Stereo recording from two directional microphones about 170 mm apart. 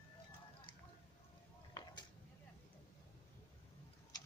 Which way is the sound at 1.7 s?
25° left (ahead or behind).